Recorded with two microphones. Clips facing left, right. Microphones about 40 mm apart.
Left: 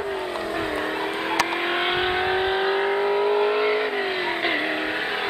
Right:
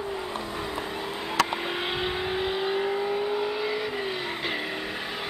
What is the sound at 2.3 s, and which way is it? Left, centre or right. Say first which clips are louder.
Vehicle: left 5 dB; left.